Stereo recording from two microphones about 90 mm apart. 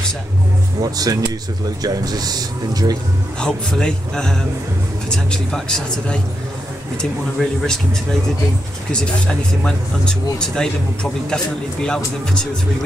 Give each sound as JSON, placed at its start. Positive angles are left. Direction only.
{"t": 0.9, "sound": "speech", "side_deg": -45}
{"t": 3.3, "sound": "speech", "side_deg": 10}
{"t": 7.3, "sound": "speech", "side_deg": 5}
{"t": 8.9, "sound": "speech", "side_deg": 10}